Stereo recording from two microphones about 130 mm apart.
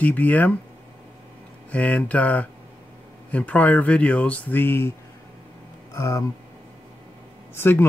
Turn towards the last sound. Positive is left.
turn(degrees=15)  # may be behind; listen again after turning